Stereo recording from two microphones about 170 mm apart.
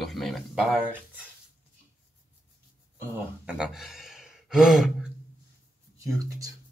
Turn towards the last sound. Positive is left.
turn(degrees=-20)  # may be behind; listen again after turning